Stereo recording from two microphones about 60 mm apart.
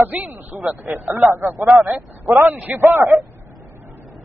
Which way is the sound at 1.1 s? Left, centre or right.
Right.